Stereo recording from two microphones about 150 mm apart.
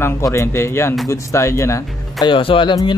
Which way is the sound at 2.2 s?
35° left (ahead or behind).